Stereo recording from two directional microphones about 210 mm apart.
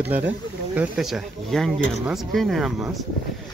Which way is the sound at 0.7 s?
Centre (ahead or behind).